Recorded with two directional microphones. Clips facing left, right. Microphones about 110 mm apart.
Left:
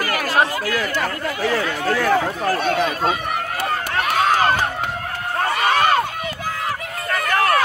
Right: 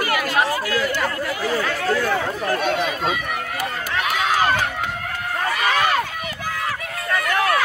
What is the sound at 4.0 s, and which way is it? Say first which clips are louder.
Crowd: left 2 dB; 45° left (ahead or behind).